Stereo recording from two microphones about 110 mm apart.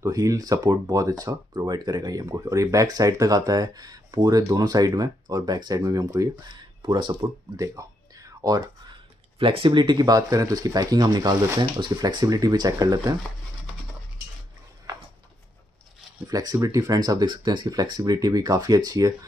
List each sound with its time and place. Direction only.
0.0 s speech: 30° right (ahead or behind)
6.8 s speech: 45° right (ahead or behind)
7.5 s a sound: 30° right (ahead or behind)
8.9 s speech: 50° right (ahead or behind); by 13.1 s 35° right (ahead or behind)
16.3 s speech: 35° right (ahead or behind)